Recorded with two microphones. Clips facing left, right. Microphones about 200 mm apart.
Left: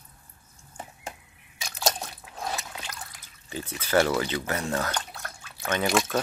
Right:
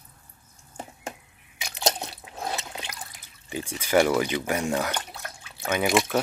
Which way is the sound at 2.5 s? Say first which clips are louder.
Right 2 dB; 20° right (ahead or behind).